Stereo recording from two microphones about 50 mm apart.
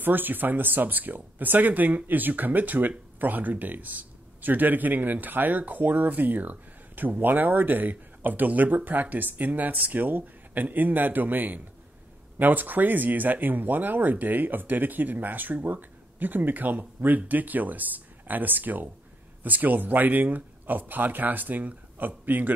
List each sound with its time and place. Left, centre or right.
0.0 s a man's voice: right